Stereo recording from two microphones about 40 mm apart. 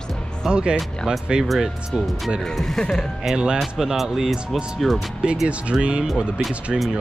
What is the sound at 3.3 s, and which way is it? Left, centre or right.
Speech, right.